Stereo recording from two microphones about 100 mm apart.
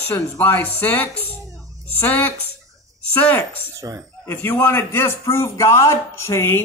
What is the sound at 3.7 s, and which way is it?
Fowl, 30° right (ahead or behind).